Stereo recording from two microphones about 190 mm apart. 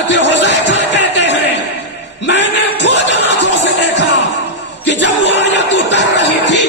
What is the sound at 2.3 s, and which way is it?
Music, 70° left (ahead or behind).